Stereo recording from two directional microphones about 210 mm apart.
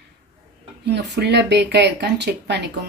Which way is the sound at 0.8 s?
55° right (ahead or behind).